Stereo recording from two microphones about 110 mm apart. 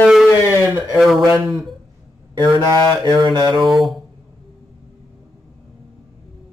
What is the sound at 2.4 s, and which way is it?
Mantra, 35° right (ahead or behind).